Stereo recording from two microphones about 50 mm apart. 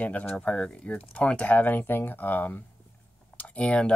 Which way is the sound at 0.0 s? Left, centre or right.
Left.